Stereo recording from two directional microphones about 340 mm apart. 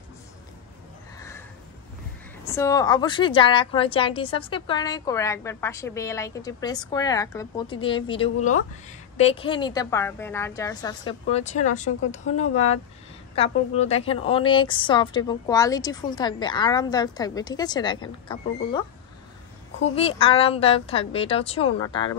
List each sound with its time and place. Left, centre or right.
2.4 s a woman's voice: centre